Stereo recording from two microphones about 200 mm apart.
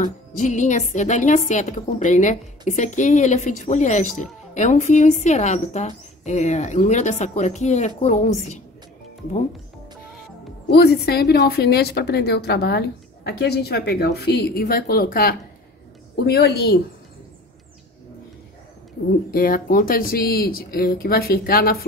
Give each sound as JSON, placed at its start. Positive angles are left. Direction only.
{"t": 0.0, "sound": "speech", "side_deg": 40}
{"t": 10.7, "sound": "a woman's voice", "side_deg": 55}
{"t": 19.3, "sound": "a woman's voice", "side_deg": 45}